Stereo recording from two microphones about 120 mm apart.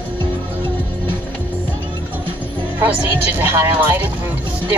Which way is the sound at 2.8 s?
20° right (ahead or behind).